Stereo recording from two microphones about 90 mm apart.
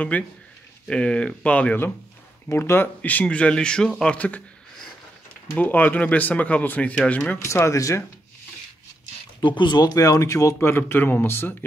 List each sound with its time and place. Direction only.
0.1 s speech: 15° left (ahead or behind)
2.5 s speech: 30° left (ahead or behind)
5.6 s speech: 20° left (ahead or behind)
7.4 s speech: 35° left (ahead or behind)
9.4 s speech: 60° left (ahead or behind); by 11.5 s 25° left (ahead or behind)